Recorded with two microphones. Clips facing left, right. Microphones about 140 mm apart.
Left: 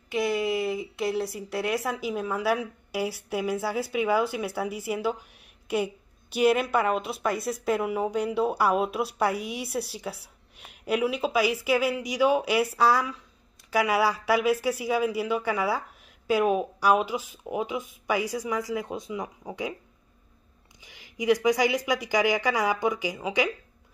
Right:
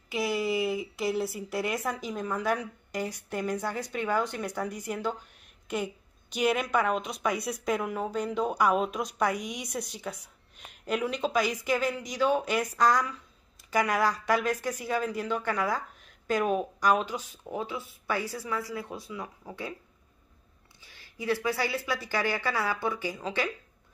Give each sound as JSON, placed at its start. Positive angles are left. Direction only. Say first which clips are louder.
{"t": 0.1, "sound": "a woman's voice", "louder": "left 3 dB", "side_deg": 0}
{"t": 6.3, "sound": "a woman's voice", "louder": "left 4 dB", "side_deg": 5}
{"t": 20.8, "sound": "a woman's voice", "louder": "left 7 dB", "side_deg": 15}